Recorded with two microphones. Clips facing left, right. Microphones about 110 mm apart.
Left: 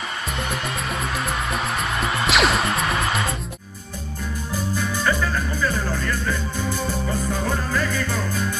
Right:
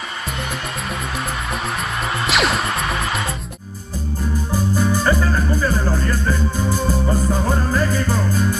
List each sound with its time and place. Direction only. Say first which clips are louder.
1.8 s music: even; centre (ahead or behind)
4.7 s music: right 5 dB; 35° right (ahead or behind)